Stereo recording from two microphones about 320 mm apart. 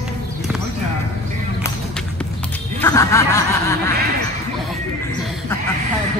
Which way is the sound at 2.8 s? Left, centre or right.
Centre.